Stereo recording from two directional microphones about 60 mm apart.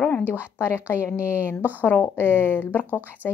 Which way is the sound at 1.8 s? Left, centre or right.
Left.